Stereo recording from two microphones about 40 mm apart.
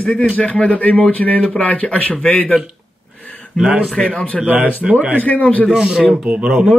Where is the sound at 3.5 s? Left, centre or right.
Right.